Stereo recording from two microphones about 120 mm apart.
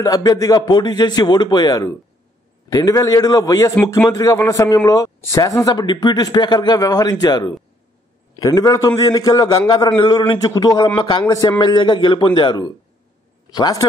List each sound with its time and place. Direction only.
0.0 s a man's voice: 30° left (ahead or behind)